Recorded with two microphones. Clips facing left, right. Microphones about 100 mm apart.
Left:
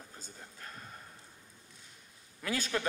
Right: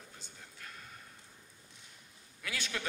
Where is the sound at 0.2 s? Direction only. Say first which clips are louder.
Left 3 dB; 35° left (ahead or behind).